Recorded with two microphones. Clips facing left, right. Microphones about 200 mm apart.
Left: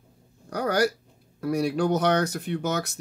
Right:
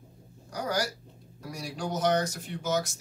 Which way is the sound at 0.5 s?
60° left (ahead or behind).